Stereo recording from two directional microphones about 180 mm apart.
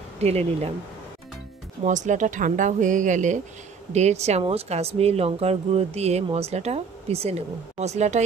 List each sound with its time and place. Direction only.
0.2 s speech: 35° right (ahead or behind)
1.9 s speech: 45° right (ahead or behind)